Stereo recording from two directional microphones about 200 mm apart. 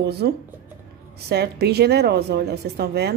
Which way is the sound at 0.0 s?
55° right (ahead or behind).